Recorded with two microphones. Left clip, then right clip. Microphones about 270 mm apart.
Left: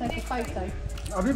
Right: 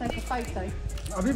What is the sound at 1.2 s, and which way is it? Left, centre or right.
Music, centre.